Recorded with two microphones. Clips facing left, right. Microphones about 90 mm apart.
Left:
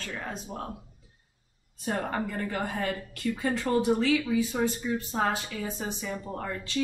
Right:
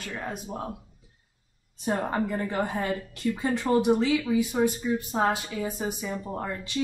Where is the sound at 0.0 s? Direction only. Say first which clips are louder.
Right 2 dB; 15° right (ahead or behind).